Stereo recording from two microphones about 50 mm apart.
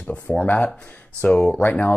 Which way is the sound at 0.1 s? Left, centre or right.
Left.